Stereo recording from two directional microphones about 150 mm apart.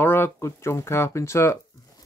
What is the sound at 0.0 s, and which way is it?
Speech, 15° left (ahead or behind).